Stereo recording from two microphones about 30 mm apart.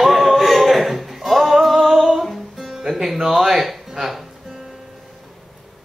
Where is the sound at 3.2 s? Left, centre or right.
Centre.